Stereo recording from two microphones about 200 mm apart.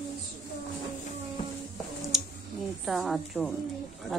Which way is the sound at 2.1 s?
Centre (ahead or behind).